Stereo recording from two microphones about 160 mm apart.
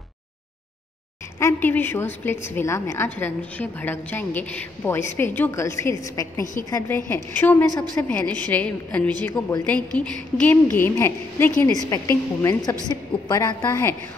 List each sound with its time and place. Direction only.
1.4 s a woman's voice: 10° left (ahead or behind)